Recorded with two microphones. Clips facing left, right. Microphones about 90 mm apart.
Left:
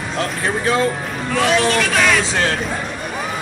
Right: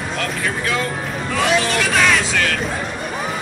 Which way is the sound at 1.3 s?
Centre (ahead or behind).